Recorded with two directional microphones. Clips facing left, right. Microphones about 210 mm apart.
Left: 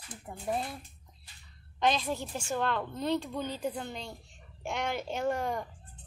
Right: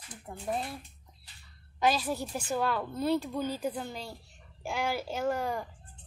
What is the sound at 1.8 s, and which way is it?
A woman's voice, 5° right (ahead or behind).